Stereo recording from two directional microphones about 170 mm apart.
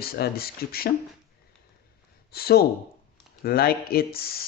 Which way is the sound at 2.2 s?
65° left (ahead or behind).